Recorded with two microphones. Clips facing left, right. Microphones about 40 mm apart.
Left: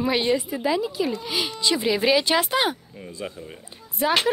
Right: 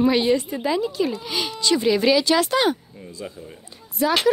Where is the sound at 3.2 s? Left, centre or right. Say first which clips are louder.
Left 1 dB; left.